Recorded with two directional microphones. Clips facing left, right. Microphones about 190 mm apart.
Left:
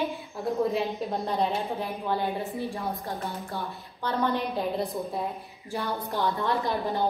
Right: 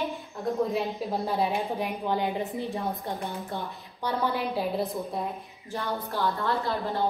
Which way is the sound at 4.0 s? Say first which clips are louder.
Left 1 dB; 10° right (ahead or behind).